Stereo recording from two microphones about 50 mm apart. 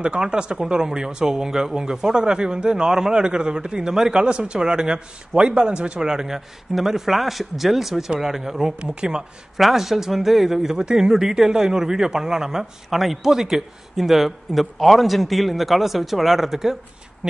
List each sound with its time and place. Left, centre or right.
0.0 s speech: centre
9.6 s a man's voice: centre